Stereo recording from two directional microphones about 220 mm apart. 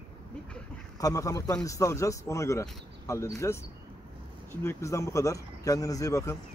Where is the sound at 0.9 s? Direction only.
15° left (ahead or behind).